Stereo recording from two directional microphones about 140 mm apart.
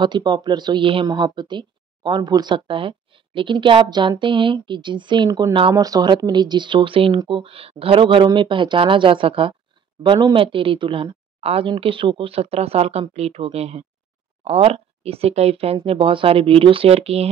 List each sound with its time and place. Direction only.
0.0 s speech: 30° right (ahead or behind)